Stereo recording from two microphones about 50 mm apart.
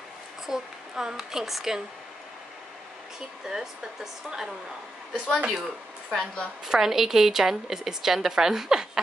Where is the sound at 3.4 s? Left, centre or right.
Centre.